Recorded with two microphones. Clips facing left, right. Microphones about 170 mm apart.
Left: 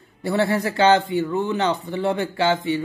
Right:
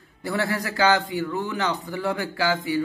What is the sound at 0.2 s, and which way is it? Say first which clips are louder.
A man's voice: left 5 dB; 25° left (ahead or behind).